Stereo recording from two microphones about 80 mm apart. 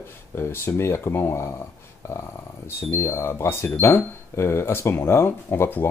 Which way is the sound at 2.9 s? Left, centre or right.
Left.